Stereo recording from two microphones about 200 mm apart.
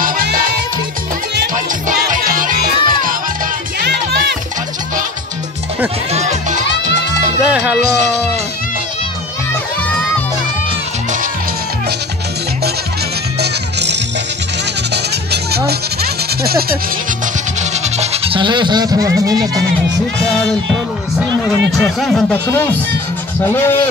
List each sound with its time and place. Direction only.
0.0 s music: 45° right (ahead or behind)
3.8 s music: 55° right (ahead or behind)
6.1 s music: 35° right (ahead or behind)
7.4 s music: 5° right (ahead or behind)
13.4 s music: 60° right (ahead or behind)
15.3 s music: 55° right (ahead or behind)
17.6 s music: 35° right (ahead or behind); by 19.3 s 15° right (ahead or behind)
20.2 s speech: 5° left (ahead or behind)
21.7 s speech: centre (ahead or behind)